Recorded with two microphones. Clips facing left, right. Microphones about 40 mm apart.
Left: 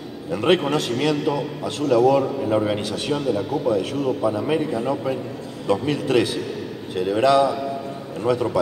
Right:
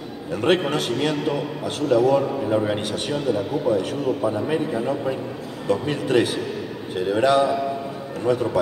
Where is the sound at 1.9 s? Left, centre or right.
Left.